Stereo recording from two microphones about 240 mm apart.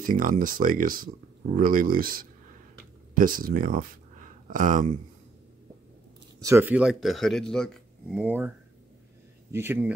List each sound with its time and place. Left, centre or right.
0.0 s speech: right
6.4 s speech: centre
9.5 s speech: centre